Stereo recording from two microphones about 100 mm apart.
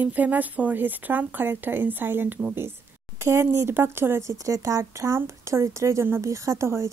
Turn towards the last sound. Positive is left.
turn(degrees=-25)  # may be behind; listen again after turning